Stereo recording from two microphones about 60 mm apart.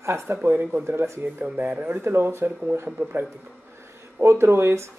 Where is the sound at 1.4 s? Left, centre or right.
Right.